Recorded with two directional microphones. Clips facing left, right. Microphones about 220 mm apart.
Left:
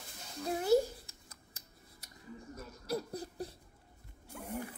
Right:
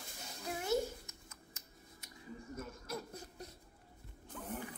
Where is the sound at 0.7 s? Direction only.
35° left (ahead or behind).